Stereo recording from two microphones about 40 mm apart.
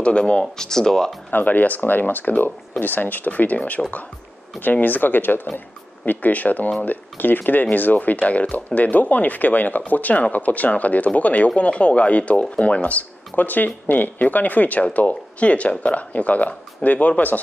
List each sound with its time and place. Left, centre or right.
0.0 s speech: left
1.3 s speech: left
4.6 s speech: left
6.0 s speech: left